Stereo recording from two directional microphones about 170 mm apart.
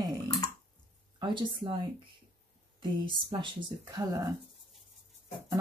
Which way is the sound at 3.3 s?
25° right (ahead or behind).